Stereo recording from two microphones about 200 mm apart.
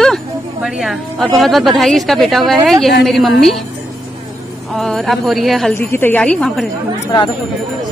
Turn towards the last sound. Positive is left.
turn(degrees=20)  # may be behind; listen again after turning